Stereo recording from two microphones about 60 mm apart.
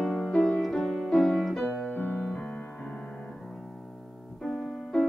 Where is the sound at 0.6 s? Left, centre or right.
Centre.